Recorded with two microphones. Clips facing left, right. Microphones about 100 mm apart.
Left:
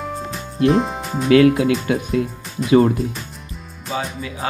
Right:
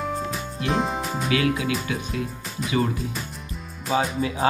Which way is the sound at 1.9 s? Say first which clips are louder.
Left 8 dB; 50° left (ahead or behind).